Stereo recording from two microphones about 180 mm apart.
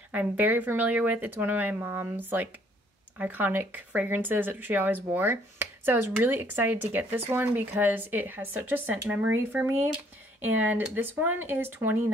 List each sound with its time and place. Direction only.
0.1 s speech: 10° right (ahead or behind)